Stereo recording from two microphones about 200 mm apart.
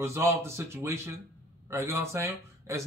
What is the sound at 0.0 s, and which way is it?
A man's voice, 15° right (ahead or behind).